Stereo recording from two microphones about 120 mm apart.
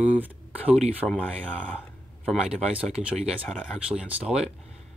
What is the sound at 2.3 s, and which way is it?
Speech, 5° right (ahead or behind).